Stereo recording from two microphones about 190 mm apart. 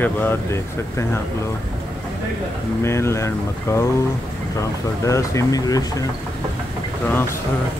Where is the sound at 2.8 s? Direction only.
15° left (ahead or behind).